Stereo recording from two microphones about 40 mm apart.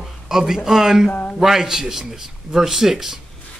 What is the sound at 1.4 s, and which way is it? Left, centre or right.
A man's voice, centre.